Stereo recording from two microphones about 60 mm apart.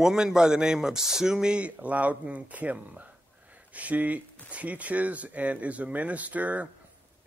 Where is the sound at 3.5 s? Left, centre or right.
Right.